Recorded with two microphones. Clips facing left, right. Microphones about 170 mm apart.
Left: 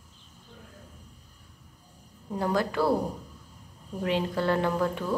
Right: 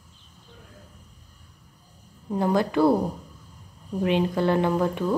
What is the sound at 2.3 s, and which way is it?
Speech, 20° right (ahead or behind).